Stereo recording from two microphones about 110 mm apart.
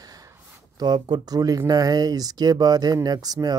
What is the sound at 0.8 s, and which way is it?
Speech, 40° right (ahead or behind).